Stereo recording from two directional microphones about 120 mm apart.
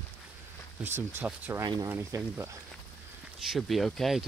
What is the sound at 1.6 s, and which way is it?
Speech, 30° right (ahead or behind).